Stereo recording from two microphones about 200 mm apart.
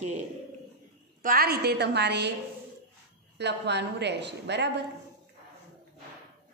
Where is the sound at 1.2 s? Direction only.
50° right (ahead or behind).